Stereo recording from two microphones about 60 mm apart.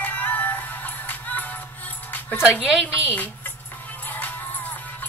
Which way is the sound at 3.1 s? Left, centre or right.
Left.